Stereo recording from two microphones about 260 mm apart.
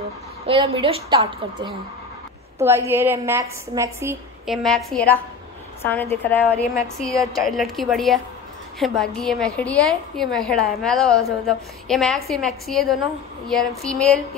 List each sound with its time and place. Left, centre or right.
0.5 s a woman's voice: centre
4.6 s a woman's voice: centre